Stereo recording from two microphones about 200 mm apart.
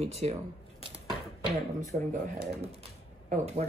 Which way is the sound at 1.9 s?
30° right (ahead or behind).